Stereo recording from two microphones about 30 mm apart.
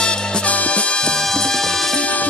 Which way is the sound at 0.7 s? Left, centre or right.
Left.